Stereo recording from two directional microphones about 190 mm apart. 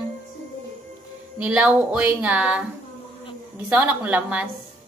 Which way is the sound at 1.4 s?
5° right (ahead or behind).